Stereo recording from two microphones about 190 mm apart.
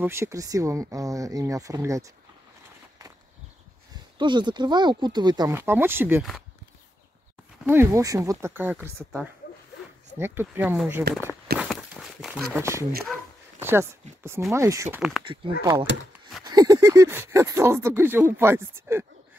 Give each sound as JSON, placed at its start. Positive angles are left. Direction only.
{"t": 0.0, "sound": "speech", "side_deg": -15}
{"t": 4.2, "sound": "speech", "side_deg": -25}
{"t": 7.6, "sound": "speech", "side_deg": -15}
{"t": 10.1, "sound": "speech", "side_deg": -10}
{"t": 11.1, "sound": "speech", "side_deg": -60}
{"t": 11.5, "sound": "a sound", "side_deg": -5}
{"t": 12.5, "sound": "speech", "side_deg": -15}
{"t": 15.0, "sound": "speech", "side_deg": 0}
{"t": 15.6, "sound": "speech", "side_deg": -15}